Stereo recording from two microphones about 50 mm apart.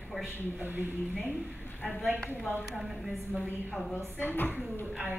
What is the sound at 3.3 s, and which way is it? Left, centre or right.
Speech, centre.